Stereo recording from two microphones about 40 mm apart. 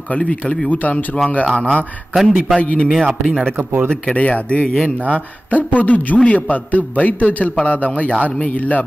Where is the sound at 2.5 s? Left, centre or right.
Left.